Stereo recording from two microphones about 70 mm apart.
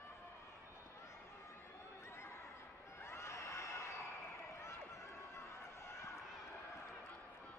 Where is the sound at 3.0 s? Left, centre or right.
Left.